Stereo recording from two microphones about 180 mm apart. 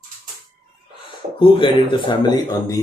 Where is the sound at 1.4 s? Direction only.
30° left (ahead or behind).